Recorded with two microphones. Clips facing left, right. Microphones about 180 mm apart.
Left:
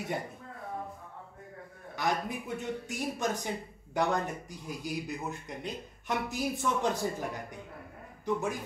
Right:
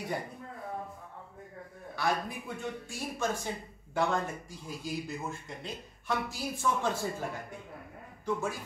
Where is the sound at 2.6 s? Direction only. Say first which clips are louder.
Left 3 dB; 20° left (ahead or behind).